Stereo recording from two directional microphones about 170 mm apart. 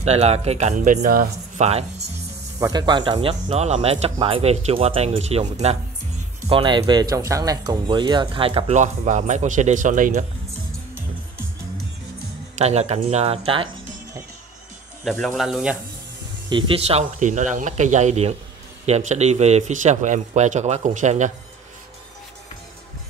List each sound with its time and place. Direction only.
0.0 s speech: 40° right (ahead or behind)
1.6 s speech: 35° right (ahead or behind)
2.6 s speech: 25° right (ahead or behind); by 10.2 s 50° right (ahead or behind)
12.5 s speech: 40° right (ahead or behind)
15.0 s speech: centre (ahead or behind)
16.4 s speech: 30° right (ahead or behind)
17.0 s a man's voice: 45° right (ahead or behind)